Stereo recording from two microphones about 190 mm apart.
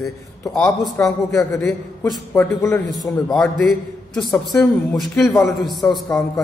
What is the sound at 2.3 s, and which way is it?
Speech, 10° left (ahead or behind).